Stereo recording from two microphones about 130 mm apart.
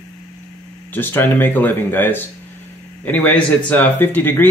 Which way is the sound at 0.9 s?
15° left (ahead or behind).